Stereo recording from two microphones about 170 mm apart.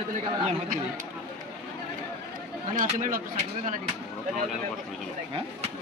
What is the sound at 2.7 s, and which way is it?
Speech, 50° right (ahead or behind).